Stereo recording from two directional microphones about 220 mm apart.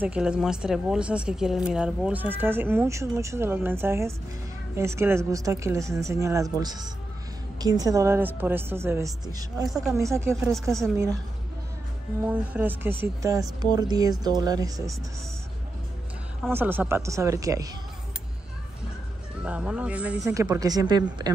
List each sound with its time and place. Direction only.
0.0 s speech: 5° right (ahead or behind)
12.3 s speech: 10° right (ahead or behind)
16.4 s speech: 10° right (ahead or behind)
19.4 s speech: 5° right (ahead or behind)